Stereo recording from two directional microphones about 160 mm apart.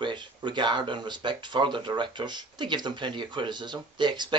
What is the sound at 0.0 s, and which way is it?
Speech, 30° right (ahead or behind).